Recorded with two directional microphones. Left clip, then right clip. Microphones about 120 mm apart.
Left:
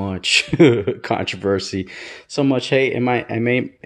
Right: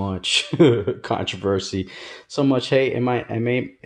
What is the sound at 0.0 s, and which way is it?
Speech, 35° left (ahead or behind).